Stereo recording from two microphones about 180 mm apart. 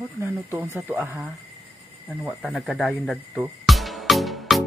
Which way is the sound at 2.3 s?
Centre (ahead or behind).